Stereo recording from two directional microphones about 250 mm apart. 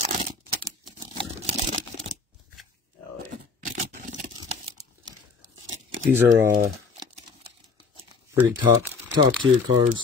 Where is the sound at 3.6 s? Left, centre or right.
Right.